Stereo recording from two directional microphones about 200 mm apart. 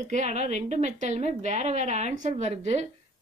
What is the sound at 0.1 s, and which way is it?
A woman's voice, 35° right (ahead or behind).